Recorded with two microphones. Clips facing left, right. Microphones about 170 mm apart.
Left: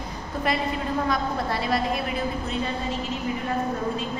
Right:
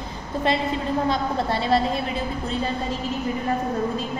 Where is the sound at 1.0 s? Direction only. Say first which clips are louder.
Right 2 dB; 25° right (ahead or behind).